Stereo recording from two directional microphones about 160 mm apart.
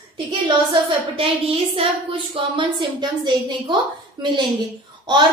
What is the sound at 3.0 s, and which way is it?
Speech, 30° right (ahead or behind).